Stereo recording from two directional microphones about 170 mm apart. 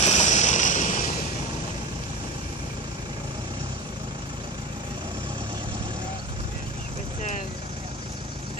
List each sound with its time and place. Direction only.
0.0 s vehicle: 40° left (ahead or behind)